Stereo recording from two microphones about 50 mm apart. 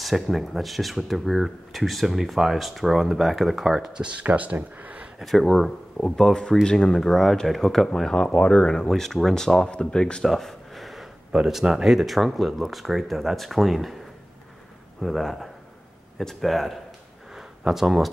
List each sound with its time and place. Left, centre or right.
0.0 s speech: centre
4.2 s speech: right
5.2 s speech: centre
9.7 s speech: centre
10.2 s a sound: centre
11.4 s speech: centre
15.0 s speech: centre
17.4 s a sound: centre